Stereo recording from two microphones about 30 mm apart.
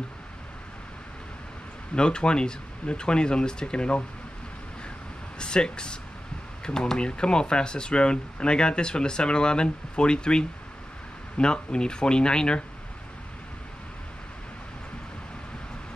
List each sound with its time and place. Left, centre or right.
2.0 s speech: left
5.4 s speech: left